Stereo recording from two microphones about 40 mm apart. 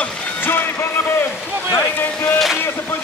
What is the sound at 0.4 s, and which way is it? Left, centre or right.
Speech, left.